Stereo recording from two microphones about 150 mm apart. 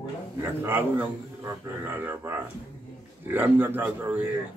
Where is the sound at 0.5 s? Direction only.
15° right (ahead or behind).